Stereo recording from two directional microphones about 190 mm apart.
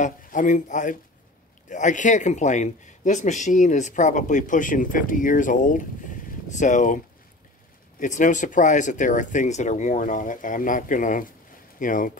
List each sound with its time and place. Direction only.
0.0 s speech: 40° left (ahead or behind)
8.0 s speech: 40° left (ahead or behind)